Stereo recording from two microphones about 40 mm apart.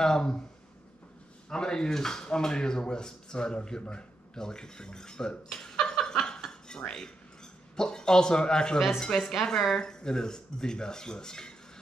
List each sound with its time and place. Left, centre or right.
0.0 s speech: centre
1.5 s speech: centre
5.9 s a sound: centre
7.7 s speech: centre